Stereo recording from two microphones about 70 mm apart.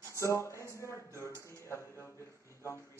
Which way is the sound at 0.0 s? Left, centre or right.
Left.